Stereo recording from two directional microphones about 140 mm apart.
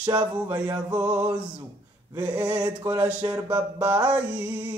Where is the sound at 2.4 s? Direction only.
25° right (ahead or behind).